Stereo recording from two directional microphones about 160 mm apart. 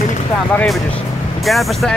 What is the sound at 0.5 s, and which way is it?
Speech, centre (ahead or behind).